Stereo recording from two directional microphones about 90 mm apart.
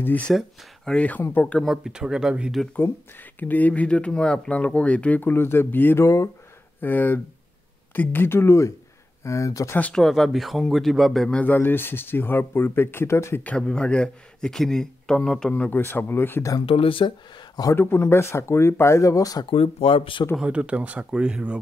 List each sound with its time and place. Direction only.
0.3 s speech: centre (ahead or behind)
0.9 s speech: 15° left (ahead or behind)
1.6 s speech: 5° right (ahead or behind)
2.7 s speech: 20° left (ahead or behind)
6.0 s speech: 35° left (ahead or behind)
6.8 s speech: 20° left (ahead or behind); by 9.7 s 35° left (ahead or behind)
9.9 s speech: 5° left (ahead or behind)
11.4 s speech: 25° left (ahead or behind)
13.4 s speech: 10° left (ahead or behind)
15.8 s speech: 25° left (ahead or behind)
16.6 s speech: 90° left; by 17.6 s 60° left (ahead or behind)
17.7 s speech: 25° left (ahead or behind)
19.5 s speech: 90° left
20.3 s speech: 15° right (ahead or behind)